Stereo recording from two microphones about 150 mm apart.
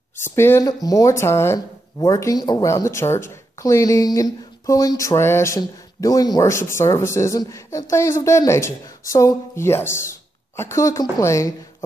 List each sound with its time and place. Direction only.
0.2 s speech: 15° left (ahead or behind)